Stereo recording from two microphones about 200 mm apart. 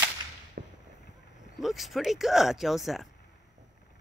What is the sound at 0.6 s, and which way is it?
Fireworks, 45° right (ahead or behind).